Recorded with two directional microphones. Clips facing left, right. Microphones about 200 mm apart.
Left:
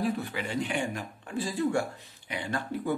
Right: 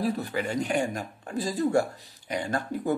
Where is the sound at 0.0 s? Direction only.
40° right (ahead or behind).